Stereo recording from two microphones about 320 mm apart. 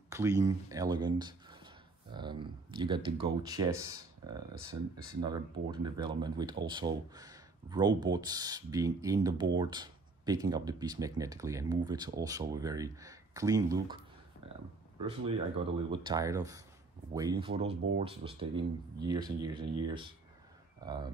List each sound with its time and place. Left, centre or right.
0.1 s speech: centre
14.4 s a sound: centre
15.0 s speech: centre